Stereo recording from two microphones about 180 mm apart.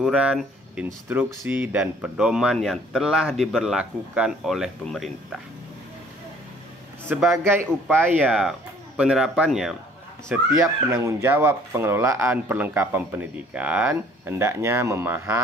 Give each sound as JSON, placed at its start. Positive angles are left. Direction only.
{"t": 0.0, "sound": "speech", "side_deg": -5}
{"t": 7.1, "sound": "speech", "side_deg": -10}
{"t": 10.2, "sound": "speech", "side_deg": -15}